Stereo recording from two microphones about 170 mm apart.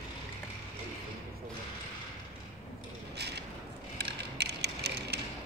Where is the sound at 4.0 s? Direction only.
75° right (ahead or behind).